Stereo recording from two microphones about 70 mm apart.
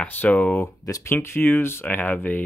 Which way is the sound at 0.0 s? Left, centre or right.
Left.